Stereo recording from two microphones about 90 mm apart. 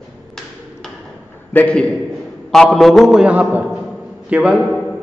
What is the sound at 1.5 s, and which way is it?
Speech, 15° left (ahead or behind).